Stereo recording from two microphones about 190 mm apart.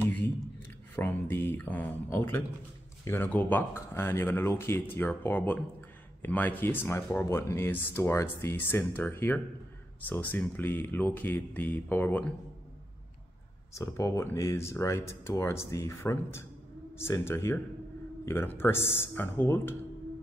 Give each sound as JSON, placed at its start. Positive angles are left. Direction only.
{"t": 0.9, "sound": "speech", "side_deg": 10}
{"t": 13.7, "sound": "speech", "side_deg": 15}